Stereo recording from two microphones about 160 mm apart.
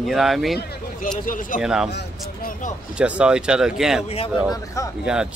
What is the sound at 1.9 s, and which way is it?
Speech, 90° left.